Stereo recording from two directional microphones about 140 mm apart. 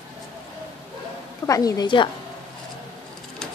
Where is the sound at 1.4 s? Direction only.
25° left (ahead or behind).